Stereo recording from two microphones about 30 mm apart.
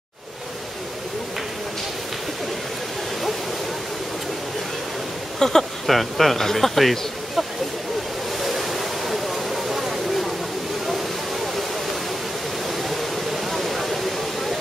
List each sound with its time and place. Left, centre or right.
5.4 s speech: centre
5.9 s speech: centre
8.4 s waves: centre
10.9 s waterfall: centre
12.6 s waterfall: centre